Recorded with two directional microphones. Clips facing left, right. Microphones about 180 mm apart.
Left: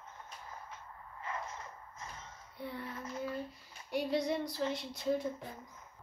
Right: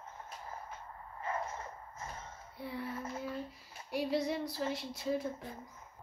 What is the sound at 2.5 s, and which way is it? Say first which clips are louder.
Speech: right 1 dB; 5° right (ahead or behind).